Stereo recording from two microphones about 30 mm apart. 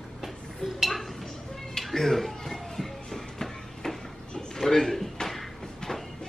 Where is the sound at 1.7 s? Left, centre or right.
Centre.